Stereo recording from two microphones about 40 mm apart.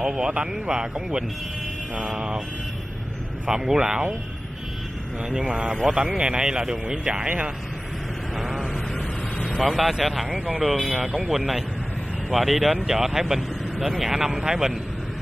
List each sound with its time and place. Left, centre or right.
0.0 s speech: centre
3.4 s speech: centre
5.3 s speech: right
8.4 s vehicle: centre
9.6 s a man's voice: centre
10.3 s speech: centre
10.7 s a man's voice: centre
11.0 s speech: right
11.2 s a man's voice: centre